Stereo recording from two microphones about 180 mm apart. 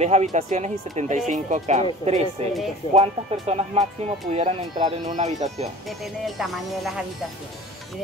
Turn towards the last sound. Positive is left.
turn(degrees=0)  # may be behind; listen again after turning